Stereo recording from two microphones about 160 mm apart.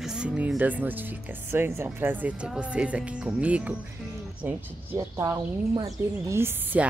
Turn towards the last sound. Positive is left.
turn(degrees=-15)  # may be behind; listen again after turning